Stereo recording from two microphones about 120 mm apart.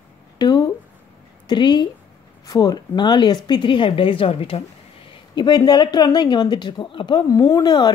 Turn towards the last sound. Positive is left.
turn(degrees=35)  # may be behind; listen again after turning